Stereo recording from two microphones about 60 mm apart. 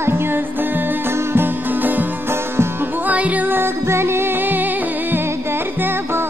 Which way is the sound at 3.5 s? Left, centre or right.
Right.